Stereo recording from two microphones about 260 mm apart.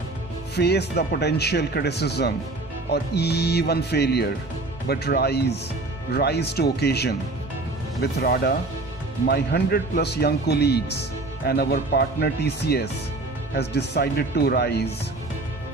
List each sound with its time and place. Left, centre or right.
0.6 s speech: left